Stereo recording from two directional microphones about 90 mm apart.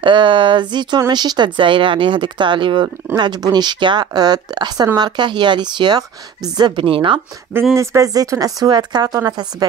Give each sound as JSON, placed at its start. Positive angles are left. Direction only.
{"t": 0.0, "sound": "speech", "side_deg": -65}
{"t": 3.2, "sound": "a woman's voice", "side_deg": -50}
{"t": 6.8, "sound": "speech", "side_deg": -75}
{"t": 7.7, "sound": "a woman's voice", "side_deg": -35}